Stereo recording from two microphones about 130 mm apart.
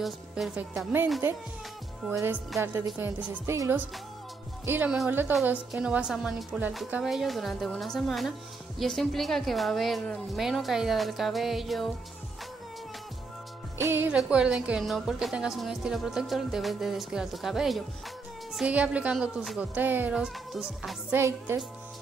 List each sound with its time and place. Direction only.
0.6 s a woman's voice: 10° right (ahead or behind)
2.0 s a woman's voice: 15° right (ahead or behind); by 11.9 s centre (ahead or behind)
13.7 s speech: 20° right (ahead or behind)
14.1 s a woman's voice: 5° right (ahead or behind)
21.1 s speech: 20° right (ahead or behind)